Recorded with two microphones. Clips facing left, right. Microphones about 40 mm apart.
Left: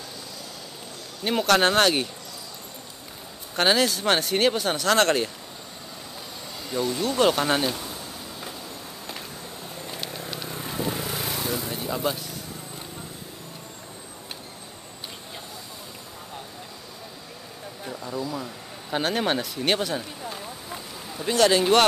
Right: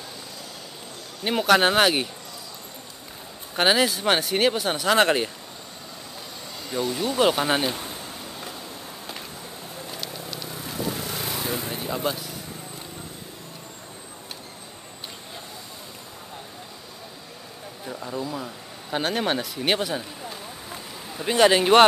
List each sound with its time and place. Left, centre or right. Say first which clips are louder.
1.2 s speech: right 1 dB; centre
3.5 s speech: right 1 dB; centre
6.7 s speech: even; centre
9.8 s vehicle: left 2 dB; centre
11.7 s vehicle: even; centre
17.8 s speech: even; centre
20.2 s a sound: left 1 dB; centre
21.1 s speech: right 2 dB; centre